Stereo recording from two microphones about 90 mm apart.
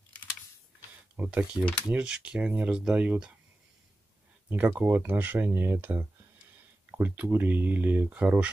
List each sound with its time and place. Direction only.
1.1 s speech: 20° right (ahead or behind)
4.5 s speech: 20° right (ahead or behind)